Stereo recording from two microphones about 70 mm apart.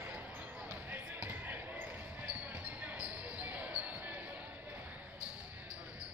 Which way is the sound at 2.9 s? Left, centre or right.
Centre.